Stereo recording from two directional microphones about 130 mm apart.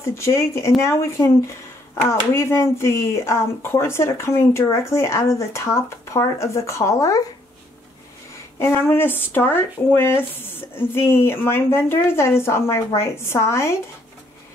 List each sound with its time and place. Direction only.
0.0 s speech: 20° left (ahead or behind)
8.5 s speech: 15° left (ahead or behind)